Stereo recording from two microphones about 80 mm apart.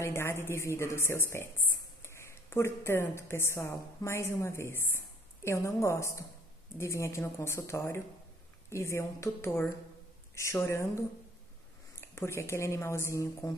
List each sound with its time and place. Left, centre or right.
0.0 s a woman's voice: left